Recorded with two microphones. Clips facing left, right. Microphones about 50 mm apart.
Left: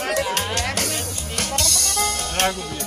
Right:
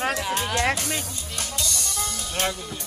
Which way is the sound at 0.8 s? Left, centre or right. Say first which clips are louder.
Left 4 dB; left.